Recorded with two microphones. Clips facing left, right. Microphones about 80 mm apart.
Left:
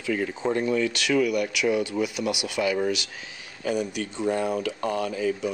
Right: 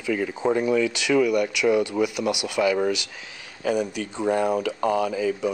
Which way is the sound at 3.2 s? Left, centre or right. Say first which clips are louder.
Right 3 dB; centre.